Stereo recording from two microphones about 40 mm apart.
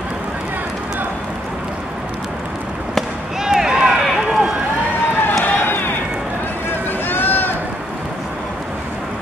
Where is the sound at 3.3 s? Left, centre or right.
Centre.